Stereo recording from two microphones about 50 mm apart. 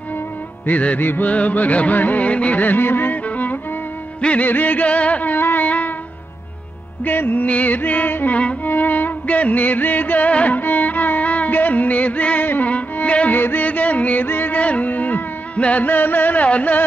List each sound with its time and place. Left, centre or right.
0.7 s music: left
1.0 s music: left
1.3 s music: left
4.5 s music: left
7.1 s music: left
13.3 s music: left
14.2 s music: left
14.6 s music: left